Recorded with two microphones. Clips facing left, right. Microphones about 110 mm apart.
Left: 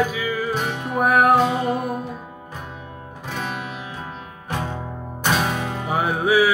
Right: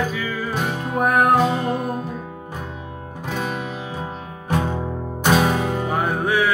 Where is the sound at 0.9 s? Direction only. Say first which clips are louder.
Left 1 dB; centre (ahead or behind).